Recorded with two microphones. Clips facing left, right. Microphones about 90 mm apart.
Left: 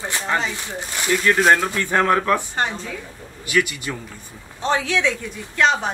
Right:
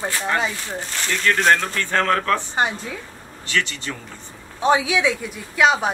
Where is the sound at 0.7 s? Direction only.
15° left (ahead or behind).